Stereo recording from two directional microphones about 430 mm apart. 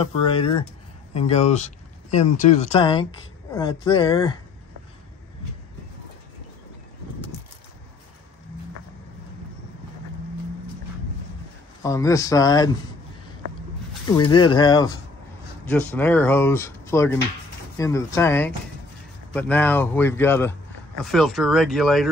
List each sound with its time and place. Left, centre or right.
0.0 s speech: centre
11.8 s speech: centre
14.3 s speech: centre